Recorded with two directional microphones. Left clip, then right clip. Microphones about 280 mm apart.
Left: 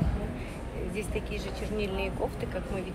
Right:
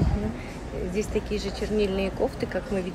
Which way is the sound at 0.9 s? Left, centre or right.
Right.